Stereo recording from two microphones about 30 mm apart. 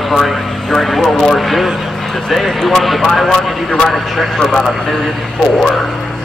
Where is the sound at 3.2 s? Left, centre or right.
Left.